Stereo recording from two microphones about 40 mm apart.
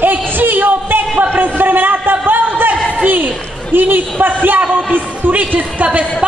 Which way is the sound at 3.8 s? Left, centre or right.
Right.